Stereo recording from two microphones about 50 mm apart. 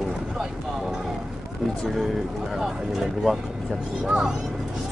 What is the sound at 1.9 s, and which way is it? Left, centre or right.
Speech, centre.